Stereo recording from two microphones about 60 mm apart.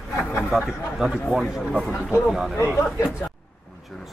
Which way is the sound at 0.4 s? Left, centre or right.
Centre.